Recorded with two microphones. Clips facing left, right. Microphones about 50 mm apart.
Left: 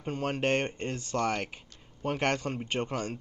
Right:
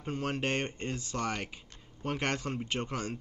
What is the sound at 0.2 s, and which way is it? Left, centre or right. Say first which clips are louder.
Speech: left 5 dB; left.